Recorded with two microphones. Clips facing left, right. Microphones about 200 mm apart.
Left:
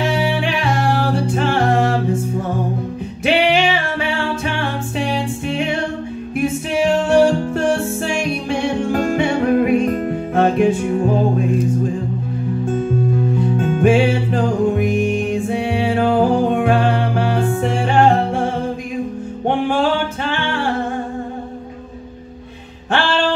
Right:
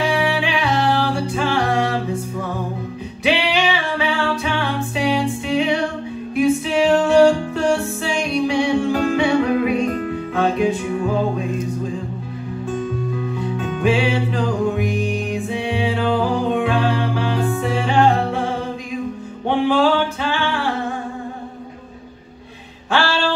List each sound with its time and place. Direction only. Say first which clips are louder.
0.4 s music: even; 50° left (ahead or behind)
3.3 s music: left 3 dB; 55° left (ahead or behind)
7.1 s music: even; 55° left (ahead or behind)
13.6 s music: left 5 dB; 50° left (ahead or behind)
19.4 s music: right 1 dB; 50° left (ahead or behind)